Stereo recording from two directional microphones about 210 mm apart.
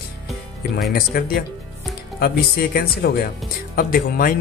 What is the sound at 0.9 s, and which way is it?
Speech, 45° left (ahead or behind).